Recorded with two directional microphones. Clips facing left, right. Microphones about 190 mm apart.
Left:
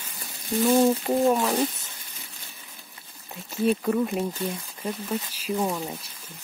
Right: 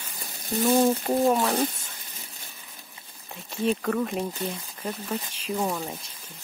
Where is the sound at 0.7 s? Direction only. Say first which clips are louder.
Left 1 dB; centre (ahead or behind).